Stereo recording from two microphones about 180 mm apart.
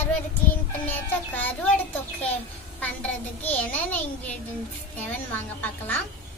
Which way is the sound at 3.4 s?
10° left (ahead or behind).